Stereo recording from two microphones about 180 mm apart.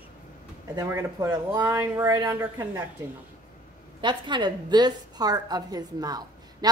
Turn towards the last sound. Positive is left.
turn(degrees=-20)  # may be behind; listen again after turning